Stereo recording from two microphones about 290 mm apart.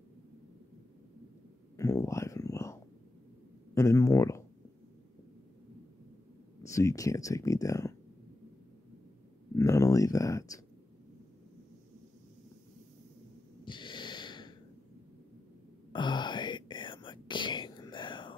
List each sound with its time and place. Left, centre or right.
1.8 s a sound: centre
3.7 s speech: centre
6.7 s speech: centre
9.6 s speech: centre
13.7 s snort: centre
15.9 s whispering: centre